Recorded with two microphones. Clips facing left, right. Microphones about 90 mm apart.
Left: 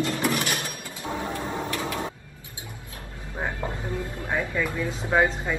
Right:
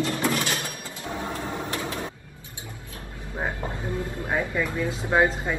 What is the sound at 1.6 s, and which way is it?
Printer, 25° right (ahead or behind).